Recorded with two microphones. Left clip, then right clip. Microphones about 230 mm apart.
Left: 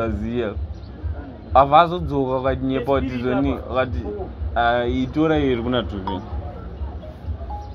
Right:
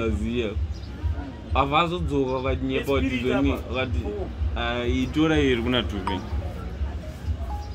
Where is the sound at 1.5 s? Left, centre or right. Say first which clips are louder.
Left 9 dB; left.